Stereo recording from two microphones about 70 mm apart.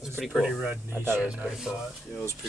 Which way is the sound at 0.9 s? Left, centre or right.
Right.